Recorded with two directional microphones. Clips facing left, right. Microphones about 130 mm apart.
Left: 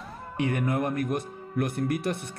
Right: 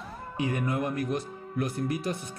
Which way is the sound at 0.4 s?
60° left (ahead or behind).